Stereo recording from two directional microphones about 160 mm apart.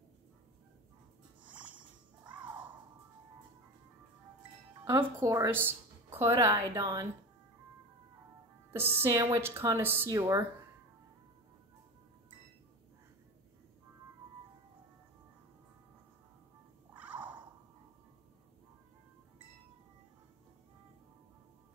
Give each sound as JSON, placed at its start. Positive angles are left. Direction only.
{"t": 2.3, "sound": "music", "side_deg": -10}
{"t": 4.8, "sound": "a woman's voice", "side_deg": -20}
{"t": 8.7, "sound": "speech", "side_deg": -15}
{"t": 16.9, "sound": "purr", "side_deg": -10}